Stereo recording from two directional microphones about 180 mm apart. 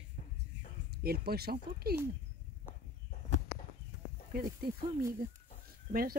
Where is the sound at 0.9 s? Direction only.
60° right (ahead or behind).